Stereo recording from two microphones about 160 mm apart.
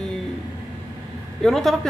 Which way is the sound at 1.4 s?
Centre (ahead or behind).